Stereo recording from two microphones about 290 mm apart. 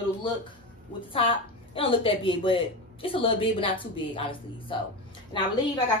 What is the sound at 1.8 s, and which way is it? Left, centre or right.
A woman's voice, centre.